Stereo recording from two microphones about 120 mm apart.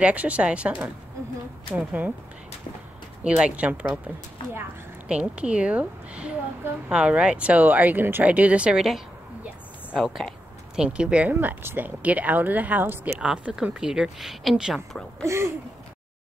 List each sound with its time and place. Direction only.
0.0 s speech: 10° right (ahead or behind)
3.3 s speech: 10° right (ahead or behind)
5.0 s speech: 10° right (ahead or behind)
15.2 s speech: 20° right (ahead or behind)